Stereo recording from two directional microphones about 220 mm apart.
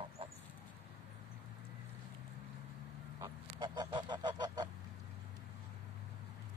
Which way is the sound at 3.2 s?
20° right (ahead or behind).